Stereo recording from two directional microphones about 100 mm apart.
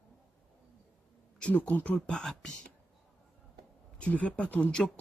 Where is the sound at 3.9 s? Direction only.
10° left (ahead or behind).